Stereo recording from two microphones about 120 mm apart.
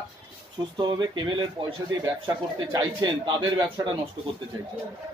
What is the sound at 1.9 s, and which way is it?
A man's voice, 30° right (ahead or behind).